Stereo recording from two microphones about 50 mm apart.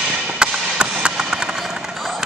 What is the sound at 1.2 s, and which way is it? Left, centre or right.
Vehicle, centre.